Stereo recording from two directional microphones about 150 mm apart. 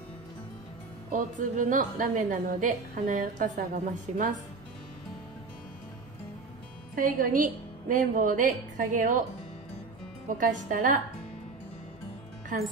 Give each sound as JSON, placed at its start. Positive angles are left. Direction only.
{"t": 1.1, "sound": "a woman's voice", "side_deg": -60}
{"t": 7.0, "sound": "a woman's voice", "side_deg": -65}
{"t": 10.3, "sound": "a woman's voice", "side_deg": -60}